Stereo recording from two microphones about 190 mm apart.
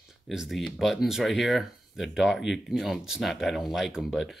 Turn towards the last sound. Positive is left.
turn(degrees=0)  # may be behind; listen again after turning